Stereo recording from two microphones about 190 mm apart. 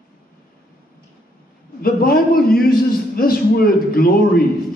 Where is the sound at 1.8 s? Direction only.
50° left (ahead or behind).